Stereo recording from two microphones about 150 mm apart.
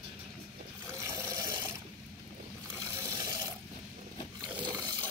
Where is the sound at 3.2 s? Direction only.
25° right (ahead or behind).